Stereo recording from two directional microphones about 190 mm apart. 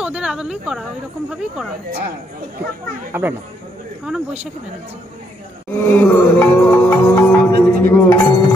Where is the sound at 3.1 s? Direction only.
10° right (ahead or behind).